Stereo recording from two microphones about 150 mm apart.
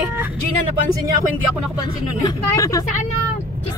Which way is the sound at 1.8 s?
25° left (ahead or behind).